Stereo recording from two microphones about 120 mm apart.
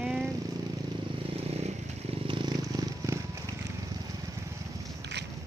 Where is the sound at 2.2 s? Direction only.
40° right (ahead or behind).